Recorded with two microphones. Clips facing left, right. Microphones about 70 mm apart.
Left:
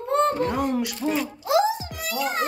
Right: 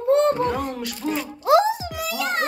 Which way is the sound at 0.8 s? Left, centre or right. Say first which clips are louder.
Left 1 dB; centre.